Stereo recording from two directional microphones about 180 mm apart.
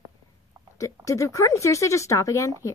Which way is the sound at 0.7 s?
15° left (ahead or behind).